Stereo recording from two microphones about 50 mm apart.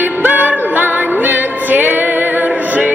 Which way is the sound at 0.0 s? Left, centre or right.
Right.